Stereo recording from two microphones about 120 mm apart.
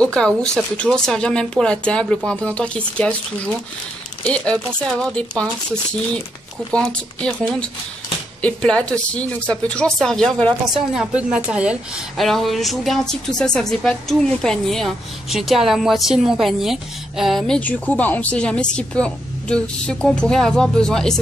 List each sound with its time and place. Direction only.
0.0 s speech: 5° left (ahead or behind)
5.1 s speech: 10° left (ahead or behind)
6.7 s speech: 5° left (ahead or behind)
8.4 s speech: 10° left (ahead or behind)
11.0 s a woman's voice: 5° right (ahead or behind)
12.2 s speech: centre (ahead or behind)